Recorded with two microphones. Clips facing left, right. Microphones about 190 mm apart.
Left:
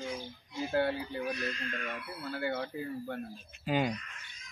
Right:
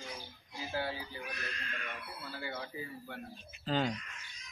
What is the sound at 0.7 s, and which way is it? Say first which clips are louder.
Speech: left 7 dB; 60° left (ahead or behind).